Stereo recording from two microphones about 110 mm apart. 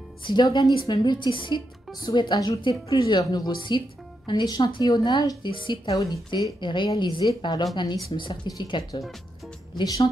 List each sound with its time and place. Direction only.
0.2 s a woman's voice: 45° left (ahead or behind)
8.1 s a woman's voice: 50° left (ahead or behind)
9.8 s a woman's voice: 35° left (ahead or behind)